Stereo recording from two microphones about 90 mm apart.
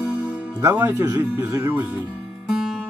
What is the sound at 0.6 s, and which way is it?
Speech, 20° right (ahead or behind).